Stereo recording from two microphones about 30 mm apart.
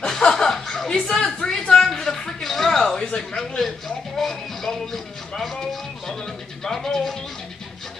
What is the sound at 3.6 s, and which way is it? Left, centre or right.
Speech, centre.